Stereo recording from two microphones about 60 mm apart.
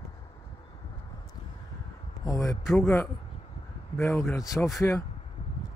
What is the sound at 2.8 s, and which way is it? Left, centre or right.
A man's voice, left.